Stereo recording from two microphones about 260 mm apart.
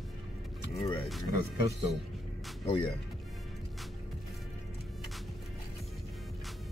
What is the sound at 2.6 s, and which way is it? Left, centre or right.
Speech, centre.